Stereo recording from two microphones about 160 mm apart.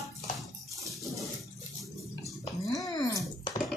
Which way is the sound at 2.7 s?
20° left (ahead or behind).